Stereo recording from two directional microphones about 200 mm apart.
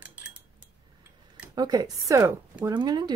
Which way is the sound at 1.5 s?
20° right (ahead or behind).